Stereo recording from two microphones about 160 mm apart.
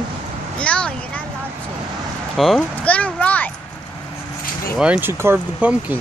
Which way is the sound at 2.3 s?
Centre (ahead or behind).